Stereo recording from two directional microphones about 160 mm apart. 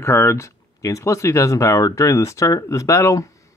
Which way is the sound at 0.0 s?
15° left (ahead or behind).